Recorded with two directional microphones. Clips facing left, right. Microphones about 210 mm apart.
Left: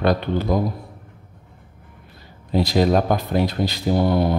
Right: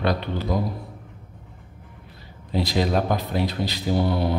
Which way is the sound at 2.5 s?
45° left (ahead or behind).